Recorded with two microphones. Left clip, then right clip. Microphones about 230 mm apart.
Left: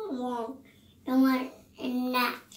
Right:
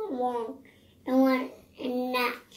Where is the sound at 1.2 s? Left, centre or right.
Left.